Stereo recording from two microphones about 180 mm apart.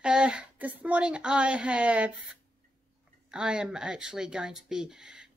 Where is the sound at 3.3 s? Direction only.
5° right (ahead or behind).